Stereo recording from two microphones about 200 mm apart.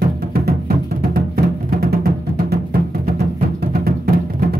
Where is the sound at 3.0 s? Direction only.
50° right (ahead or behind).